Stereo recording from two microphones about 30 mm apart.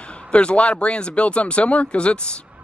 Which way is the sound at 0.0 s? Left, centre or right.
Left.